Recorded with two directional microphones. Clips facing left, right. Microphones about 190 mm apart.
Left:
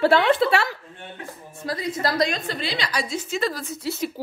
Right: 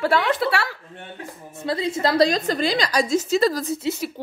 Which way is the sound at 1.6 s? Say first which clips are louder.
Right 3 dB; 25° right (ahead or behind).